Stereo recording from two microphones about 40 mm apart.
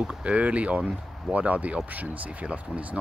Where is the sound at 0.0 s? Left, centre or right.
Right.